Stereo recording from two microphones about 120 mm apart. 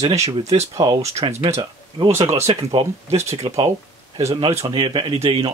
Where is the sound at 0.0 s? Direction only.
65° right (ahead or behind).